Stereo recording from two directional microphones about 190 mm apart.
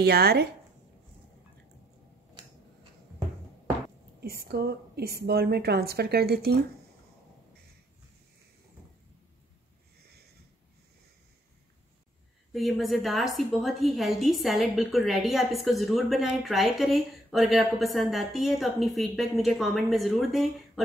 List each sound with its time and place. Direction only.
0.0 s a woman's voice: 55° right (ahead or behind)
4.2 s a woman's voice: 55° right (ahead or behind)
12.5 s a woman's voice: centre (ahead or behind)